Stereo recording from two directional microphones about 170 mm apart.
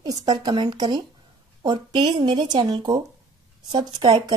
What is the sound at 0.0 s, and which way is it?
Speech, 25° right (ahead or behind).